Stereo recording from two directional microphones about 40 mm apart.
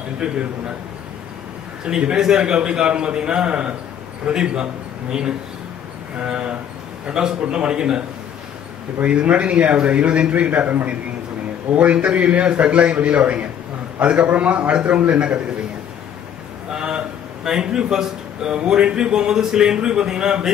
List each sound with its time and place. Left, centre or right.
0.2 s a man's voice: right
1.9 s a man's voice: right
6.2 s a man's voice: right
9.0 s a man's voice: right
10.7 s a man's voice: right
16.7 s a sound: right
17.5 s a man's voice: centre